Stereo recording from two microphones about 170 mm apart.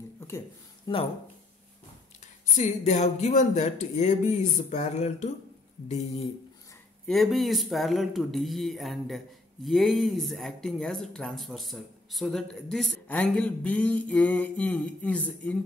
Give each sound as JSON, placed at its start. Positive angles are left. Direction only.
{"t": 0.9, "sound": "speech", "side_deg": 25}
{"t": 2.5, "sound": "speech", "side_deg": 40}
{"t": 7.1, "sound": "speech", "side_deg": 0}